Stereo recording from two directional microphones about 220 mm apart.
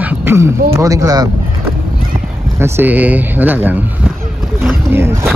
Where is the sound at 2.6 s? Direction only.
10° right (ahead or behind).